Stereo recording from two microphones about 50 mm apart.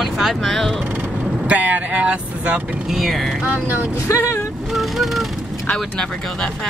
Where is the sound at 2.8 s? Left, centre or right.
Centre.